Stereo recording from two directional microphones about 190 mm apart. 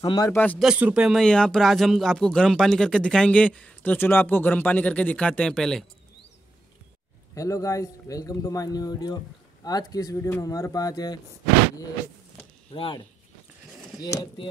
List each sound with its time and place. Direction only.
0.0 s speech: 20° left (ahead or behind)
0.7 s speech: 5° right (ahead or behind)
7.3 s speech: 15° left (ahead or behind)
12.7 s speech: 30° left (ahead or behind)
14.0 s speech: 20° left (ahead or behind)